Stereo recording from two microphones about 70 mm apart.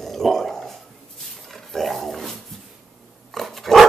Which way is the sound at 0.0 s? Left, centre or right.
Centre.